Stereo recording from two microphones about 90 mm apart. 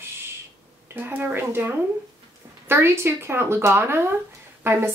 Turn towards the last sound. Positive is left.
turn(degrees=-30)  # may be behind; listen again after turning